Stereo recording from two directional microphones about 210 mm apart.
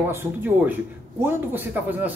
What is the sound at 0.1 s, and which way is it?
Speech, 10° right (ahead or behind).